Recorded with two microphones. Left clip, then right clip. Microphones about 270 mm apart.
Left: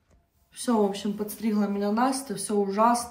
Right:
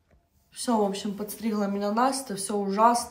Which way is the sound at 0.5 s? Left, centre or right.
Centre.